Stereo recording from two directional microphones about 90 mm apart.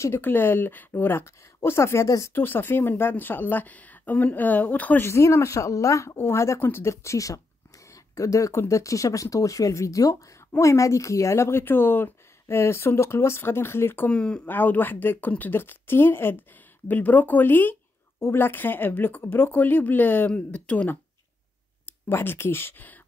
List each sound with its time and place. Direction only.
0.0 s speech: 25° left (ahead or behind)
5.0 s speech: 35° left (ahead or behind)
14.1 s speech: 10° left (ahead or behind)